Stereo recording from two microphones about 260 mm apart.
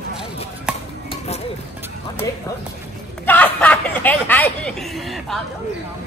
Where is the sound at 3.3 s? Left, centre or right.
Centre.